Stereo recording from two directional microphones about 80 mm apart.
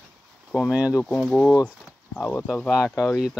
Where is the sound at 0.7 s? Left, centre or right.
Centre.